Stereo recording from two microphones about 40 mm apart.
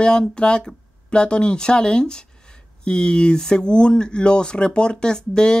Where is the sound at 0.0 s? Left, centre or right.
Left.